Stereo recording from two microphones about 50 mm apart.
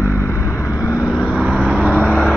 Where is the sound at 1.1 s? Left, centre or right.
Left.